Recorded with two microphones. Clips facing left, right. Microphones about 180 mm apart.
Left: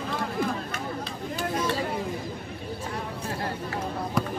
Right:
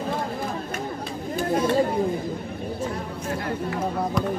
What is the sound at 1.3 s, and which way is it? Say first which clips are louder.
Chatter: right 7 dB; 50° right (ahead or behind).